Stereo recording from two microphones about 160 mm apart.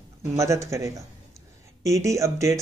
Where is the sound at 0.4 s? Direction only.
20° right (ahead or behind).